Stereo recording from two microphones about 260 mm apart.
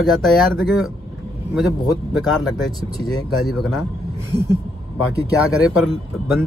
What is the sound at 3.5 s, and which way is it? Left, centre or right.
Speech, centre.